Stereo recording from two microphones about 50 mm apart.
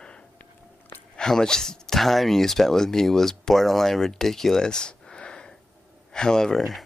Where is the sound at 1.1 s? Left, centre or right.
Centre.